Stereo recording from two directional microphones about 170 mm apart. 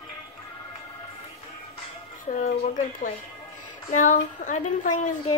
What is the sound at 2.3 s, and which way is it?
Speech, 50° left (ahead or behind).